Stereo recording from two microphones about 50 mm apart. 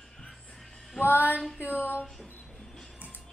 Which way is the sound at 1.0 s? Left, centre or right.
Left.